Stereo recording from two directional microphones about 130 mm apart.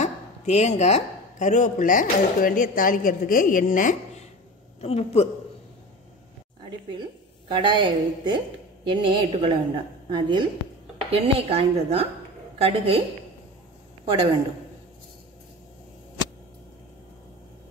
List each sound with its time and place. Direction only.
0.0 s speech: 60° left (ahead or behind); by 3.9 s 90° left
4.8 s a woman's voice: 55° left (ahead or behind)
7.4 s a woman's voice: 40° right (ahead or behind)
11.1 s a woman's voice: 50° right (ahead or behind)
14.0 s a man's voice: 45° right (ahead or behind)